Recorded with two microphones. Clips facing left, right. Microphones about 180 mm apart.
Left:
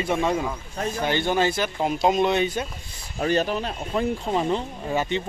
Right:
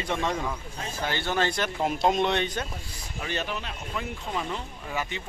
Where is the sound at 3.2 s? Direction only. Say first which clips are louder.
Left 9 dB; 40° left (ahead or behind).